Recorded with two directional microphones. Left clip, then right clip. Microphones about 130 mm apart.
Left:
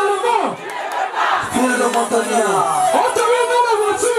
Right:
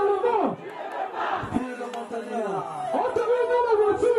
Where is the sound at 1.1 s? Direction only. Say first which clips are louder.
Left 11 dB; 10° left (ahead or behind).